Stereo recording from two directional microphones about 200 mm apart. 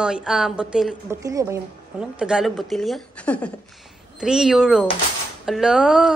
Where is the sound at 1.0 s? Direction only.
15° right (ahead or behind).